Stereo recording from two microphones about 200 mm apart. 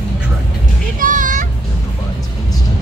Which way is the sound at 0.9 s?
40° right (ahead or behind).